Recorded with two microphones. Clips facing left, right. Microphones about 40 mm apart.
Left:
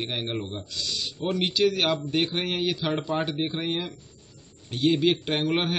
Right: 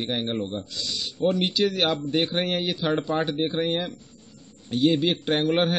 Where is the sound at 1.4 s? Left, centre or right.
Centre.